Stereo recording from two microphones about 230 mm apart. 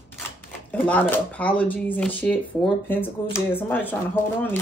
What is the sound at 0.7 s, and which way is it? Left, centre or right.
Speech, centre.